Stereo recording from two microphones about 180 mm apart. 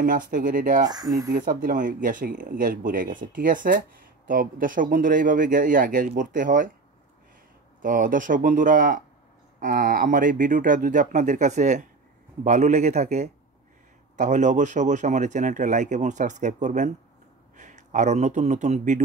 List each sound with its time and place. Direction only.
0.0 s a man's voice: 50° right (ahead or behind)
0.8 s speech: 20° right (ahead or behind)
1.3 s a man's voice: 50° right (ahead or behind)
7.8 s a man's voice: 50° right (ahead or behind)